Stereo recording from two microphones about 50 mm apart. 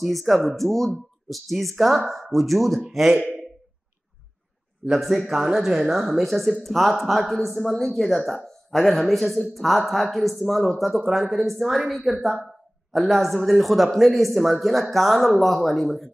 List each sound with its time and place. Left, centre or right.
0.0 s a man's voice: centre
4.9 s a man's voice: centre